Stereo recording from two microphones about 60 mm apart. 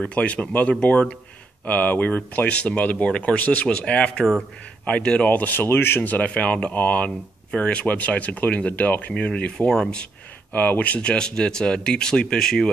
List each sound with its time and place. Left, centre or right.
0.0 s speech: left
4.8 s speech: centre
10.5 s speech: left; by 12.7 s centre